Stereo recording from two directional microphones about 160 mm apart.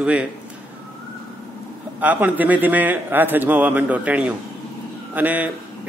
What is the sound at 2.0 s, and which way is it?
A man's voice, 10° right (ahead or behind).